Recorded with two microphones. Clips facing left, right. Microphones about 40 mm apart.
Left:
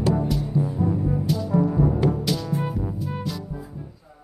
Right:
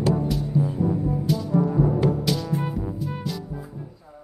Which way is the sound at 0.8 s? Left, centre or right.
Centre.